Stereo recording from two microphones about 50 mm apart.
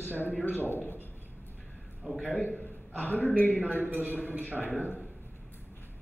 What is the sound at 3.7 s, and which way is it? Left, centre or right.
Speech, right.